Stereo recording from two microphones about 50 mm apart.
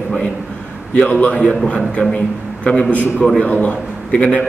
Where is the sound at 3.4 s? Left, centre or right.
Left.